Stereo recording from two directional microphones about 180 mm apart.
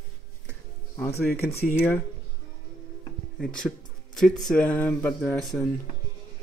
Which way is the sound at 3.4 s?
5° left (ahead or behind).